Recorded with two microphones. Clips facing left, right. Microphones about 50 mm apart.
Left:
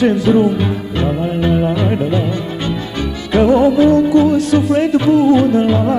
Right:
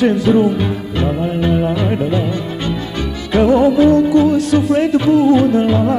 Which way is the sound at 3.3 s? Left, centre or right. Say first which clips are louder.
Left 1 dB; centre.